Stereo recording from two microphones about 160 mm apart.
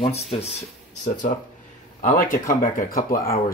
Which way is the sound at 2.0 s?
55° left (ahead or behind).